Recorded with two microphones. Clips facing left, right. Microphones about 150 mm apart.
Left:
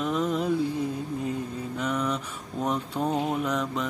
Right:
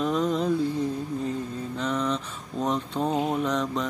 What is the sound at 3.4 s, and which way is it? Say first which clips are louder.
Mantra: right 2 dB; 5° left (ahead or behind).